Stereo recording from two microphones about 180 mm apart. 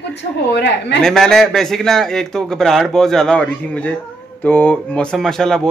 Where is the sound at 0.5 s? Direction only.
70° left (ahead or behind).